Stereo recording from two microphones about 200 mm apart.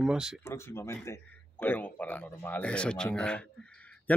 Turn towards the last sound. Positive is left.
turn(degrees=5)  # may be behind; listen again after turning